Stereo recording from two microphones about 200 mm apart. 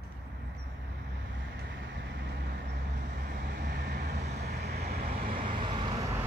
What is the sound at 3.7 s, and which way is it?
Vehicle, 55° right (ahead or behind).